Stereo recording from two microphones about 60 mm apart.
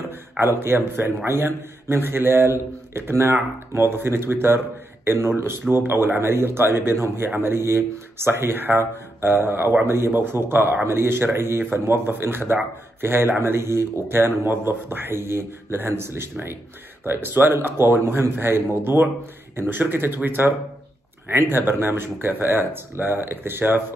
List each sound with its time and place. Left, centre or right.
0.4 s a man's voice: right